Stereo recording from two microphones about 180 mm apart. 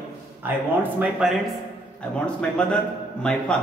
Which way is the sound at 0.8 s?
5° right (ahead or behind).